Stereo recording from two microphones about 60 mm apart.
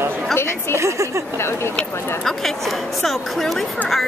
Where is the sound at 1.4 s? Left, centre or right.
Left.